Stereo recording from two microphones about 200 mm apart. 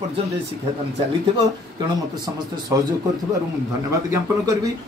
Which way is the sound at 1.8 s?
20° right (ahead or behind).